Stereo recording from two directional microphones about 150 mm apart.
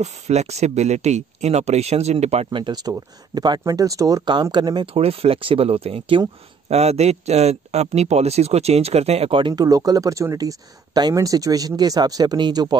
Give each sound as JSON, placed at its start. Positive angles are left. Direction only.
{"t": 0.0, "sound": "speech", "side_deg": -50}
{"t": 2.6, "sound": "speech", "side_deg": -25}
{"t": 9.5, "sound": "speech", "side_deg": -25}